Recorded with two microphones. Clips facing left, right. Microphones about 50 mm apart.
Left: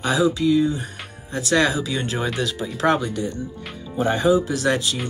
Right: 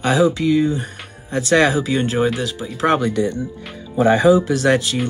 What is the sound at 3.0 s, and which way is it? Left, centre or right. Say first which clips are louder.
Speech: right 7 dB; right.